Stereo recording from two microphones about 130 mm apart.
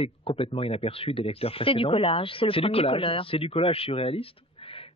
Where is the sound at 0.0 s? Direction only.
50° left (ahead or behind).